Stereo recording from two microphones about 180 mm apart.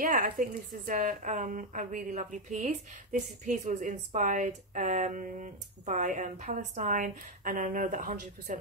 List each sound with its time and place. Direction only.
0.0 s a woman's voice: 50° right (ahead or behind)